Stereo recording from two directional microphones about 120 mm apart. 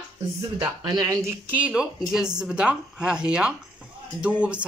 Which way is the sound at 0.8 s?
30° right (ahead or behind).